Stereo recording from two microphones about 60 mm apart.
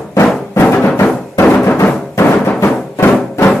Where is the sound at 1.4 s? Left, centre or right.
Left.